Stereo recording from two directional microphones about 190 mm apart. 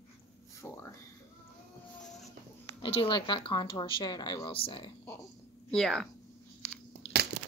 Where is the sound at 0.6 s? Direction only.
15° left (ahead or behind).